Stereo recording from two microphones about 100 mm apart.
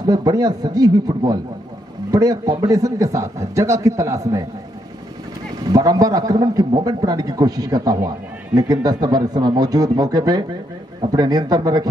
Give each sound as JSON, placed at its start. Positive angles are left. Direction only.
{"t": 0.0, "sound": "a man's voice", "side_deg": -40}
{"t": 5.7, "sound": "a man's voice", "side_deg": -40}